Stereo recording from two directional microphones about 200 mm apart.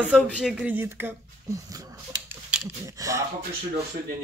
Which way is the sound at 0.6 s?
10° right (ahead or behind).